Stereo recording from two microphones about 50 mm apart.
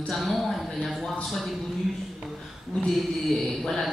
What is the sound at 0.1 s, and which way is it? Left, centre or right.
Speech, centre.